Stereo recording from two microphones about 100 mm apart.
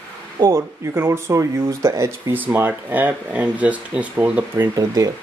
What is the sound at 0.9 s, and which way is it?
Speech, 25° right (ahead or behind).